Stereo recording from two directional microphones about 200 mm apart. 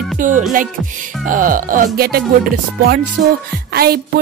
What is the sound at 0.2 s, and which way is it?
Speech, 40° right (ahead or behind).